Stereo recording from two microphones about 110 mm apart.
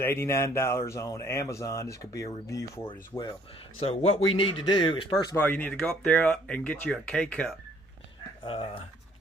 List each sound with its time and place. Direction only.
0.0 s speech: 20° left (ahead or behind)
3.8 s speech: 60° left (ahead or behind)
5.3 s speech: 15° left (ahead or behind)